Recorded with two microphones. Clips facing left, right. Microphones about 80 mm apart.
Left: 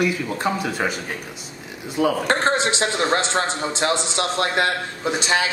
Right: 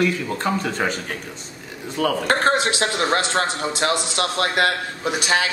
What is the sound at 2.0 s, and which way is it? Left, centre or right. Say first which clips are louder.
A man's voice: left 1 dB; centre.